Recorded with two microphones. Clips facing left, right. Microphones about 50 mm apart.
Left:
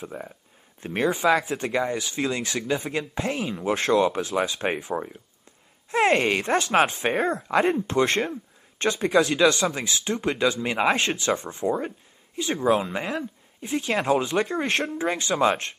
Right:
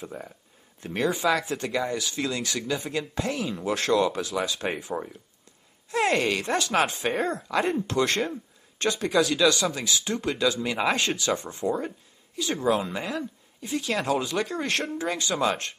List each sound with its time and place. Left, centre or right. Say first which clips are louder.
0.0 s speech: left 2 dB; centre